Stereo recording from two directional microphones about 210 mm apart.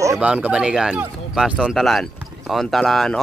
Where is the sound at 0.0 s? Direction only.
10° right (ahead or behind).